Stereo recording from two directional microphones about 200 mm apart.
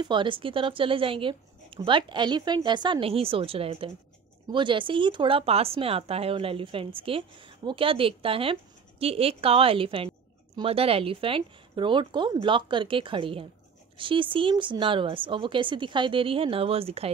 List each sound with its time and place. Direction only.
0.0 s speech: 25° right (ahead or behind)